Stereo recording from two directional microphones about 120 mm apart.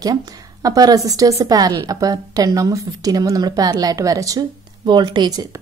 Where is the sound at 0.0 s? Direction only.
35° right (ahead or behind).